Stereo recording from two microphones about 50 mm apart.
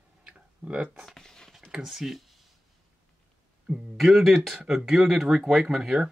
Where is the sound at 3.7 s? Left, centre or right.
Centre.